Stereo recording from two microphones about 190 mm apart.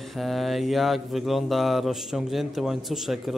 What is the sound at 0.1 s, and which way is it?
A man's voice, centre (ahead or behind).